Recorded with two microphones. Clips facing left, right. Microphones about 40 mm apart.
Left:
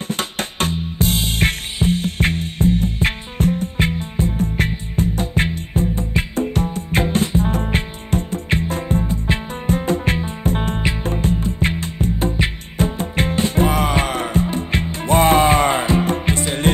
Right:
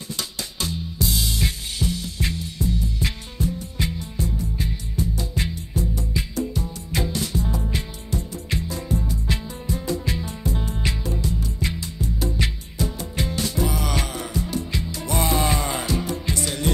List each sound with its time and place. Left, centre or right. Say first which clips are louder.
0.1 s music: left 7 dB; left